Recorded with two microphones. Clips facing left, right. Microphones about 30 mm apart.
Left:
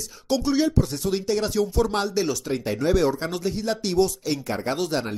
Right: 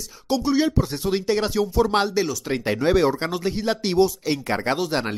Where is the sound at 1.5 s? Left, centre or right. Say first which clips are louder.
Right 2 dB; centre.